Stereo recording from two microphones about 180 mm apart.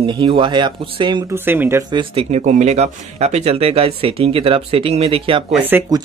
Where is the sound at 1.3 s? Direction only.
10° right (ahead or behind).